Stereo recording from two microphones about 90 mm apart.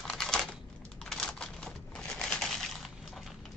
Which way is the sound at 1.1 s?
5° left (ahead or behind).